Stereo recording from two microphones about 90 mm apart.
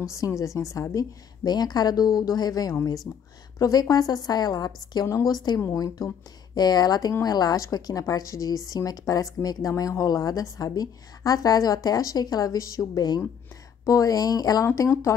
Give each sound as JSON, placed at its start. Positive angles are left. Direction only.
{"t": 0.1, "sound": "a woman's voice", "side_deg": 35}
{"t": 6.0, "sound": "speech", "side_deg": 0}
{"t": 6.5, "sound": "a woman's voice", "side_deg": 50}
{"t": 14.7, "sound": "a woman's voice", "side_deg": 30}